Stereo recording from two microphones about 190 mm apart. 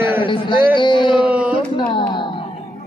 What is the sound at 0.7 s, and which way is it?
Speech, 25° left (ahead or behind).